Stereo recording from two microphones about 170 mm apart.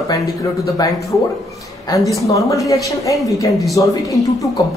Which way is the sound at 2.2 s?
20° left (ahead or behind).